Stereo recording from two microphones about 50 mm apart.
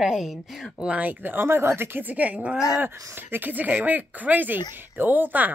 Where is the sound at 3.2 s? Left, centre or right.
Right.